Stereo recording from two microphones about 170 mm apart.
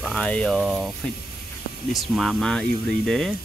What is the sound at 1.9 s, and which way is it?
Speech, centre (ahead or behind).